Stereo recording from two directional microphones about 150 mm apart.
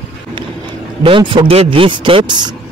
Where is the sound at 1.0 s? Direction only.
35° right (ahead or behind).